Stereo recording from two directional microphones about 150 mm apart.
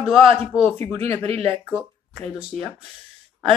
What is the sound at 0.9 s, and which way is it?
Speech, 40° right (ahead or behind).